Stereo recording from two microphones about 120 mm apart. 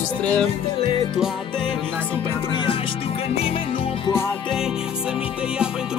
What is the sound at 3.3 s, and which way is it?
Music, 55° left (ahead or behind).